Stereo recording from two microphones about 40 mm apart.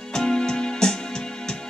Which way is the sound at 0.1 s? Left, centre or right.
Centre.